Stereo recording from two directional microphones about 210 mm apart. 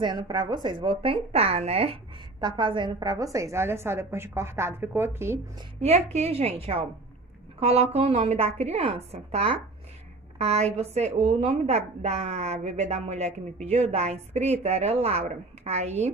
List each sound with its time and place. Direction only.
0.0 s a woman's voice: 20° right (ahead or behind)
5.8 s a woman's voice: 30° right (ahead or behind)